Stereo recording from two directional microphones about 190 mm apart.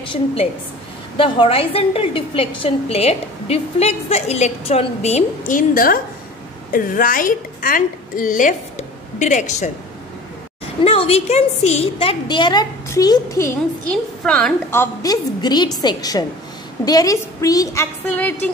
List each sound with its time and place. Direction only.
0.0 s a woman's voice: 30° left (ahead or behind)
10.8 s a woman's voice: 30° left (ahead or behind)
13.8 s a woman's voice: 5° left (ahead or behind)